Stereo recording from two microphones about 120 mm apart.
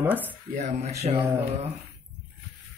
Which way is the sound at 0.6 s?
65° right (ahead or behind).